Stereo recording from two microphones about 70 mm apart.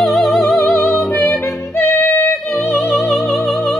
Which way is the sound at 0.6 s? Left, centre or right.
Left.